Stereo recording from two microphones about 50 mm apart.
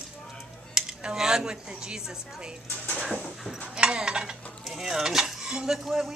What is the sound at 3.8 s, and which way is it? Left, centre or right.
Speech, centre.